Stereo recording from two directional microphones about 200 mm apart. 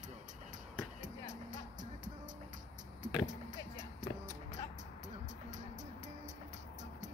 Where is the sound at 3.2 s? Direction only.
40° right (ahead or behind).